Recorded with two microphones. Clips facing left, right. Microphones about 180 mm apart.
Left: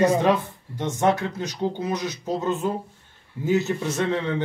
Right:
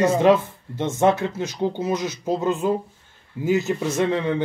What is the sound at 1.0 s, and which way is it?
A man's voice, 20° right (ahead or behind).